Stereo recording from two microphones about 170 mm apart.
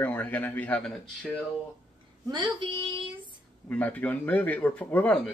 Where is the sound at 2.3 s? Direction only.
30° right (ahead or behind).